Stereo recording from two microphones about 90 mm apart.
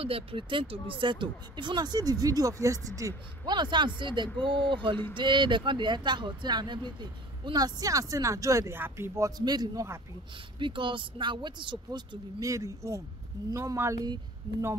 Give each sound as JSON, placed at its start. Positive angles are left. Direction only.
{"t": 0.0, "sound": "speech", "side_deg": -90}
{"t": 3.4, "sound": "speech", "side_deg": -55}
{"t": 8.7, "sound": "speech", "side_deg": -25}
{"t": 9.4, "sound": "a man's voice", "side_deg": -50}
{"t": 10.6, "sound": "speech", "side_deg": -70}
{"t": 12.4, "sound": "speech", "side_deg": -35}